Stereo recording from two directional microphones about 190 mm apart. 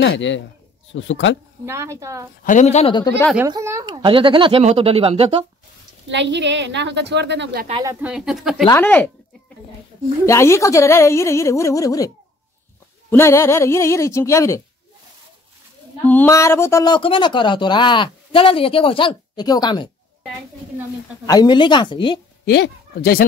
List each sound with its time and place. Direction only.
0.0 s a man's voice: 70° left (ahead or behind)
1.7 s a woman's voice: 15° right (ahead or behind)
2.4 s speech: 40° left (ahead or behind)
3.4 s speech: 15° right (ahead or behind)
6.0 s a woman's voice: 70° right (ahead or behind)
7.8 s a woman's voice: 15° right (ahead or behind)
8.1 s speech: centre (ahead or behind)
8.6 s speech: 10° left (ahead or behind)
10.2 s speech: 15° left (ahead or behind)
13.1 s speech: 15° left (ahead or behind)
16.1 s speech: 10° left (ahead or behind)
21.3 s speech: 20° left (ahead or behind)
22.5 s speech: 55° left (ahead or behind)